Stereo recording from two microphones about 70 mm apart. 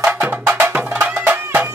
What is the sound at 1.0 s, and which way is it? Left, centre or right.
Music, right.